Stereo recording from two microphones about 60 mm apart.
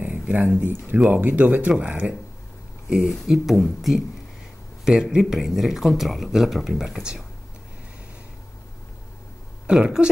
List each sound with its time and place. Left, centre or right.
0.0 s a sound: right
0.7 s speech: right
1.1 s speech: right
2.9 s speech: centre
4.9 s speech: centre
5.2 s speech: centre
9.7 s speech: centre